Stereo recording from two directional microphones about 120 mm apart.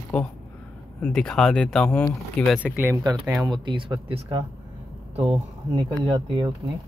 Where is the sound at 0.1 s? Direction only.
10° left (ahead or behind).